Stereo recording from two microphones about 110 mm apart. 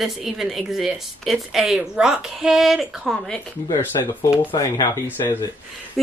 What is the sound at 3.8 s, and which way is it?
Speech, 20° left (ahead or behind).